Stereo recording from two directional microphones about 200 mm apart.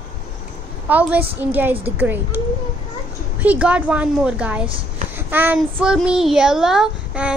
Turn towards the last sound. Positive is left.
turn(degrees=-5)  # may be behind; listen again after turning